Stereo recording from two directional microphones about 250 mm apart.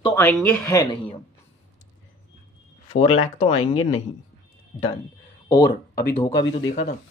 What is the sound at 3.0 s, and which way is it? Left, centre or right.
Speech, left.